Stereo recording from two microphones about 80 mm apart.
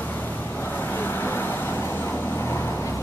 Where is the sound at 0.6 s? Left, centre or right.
Left.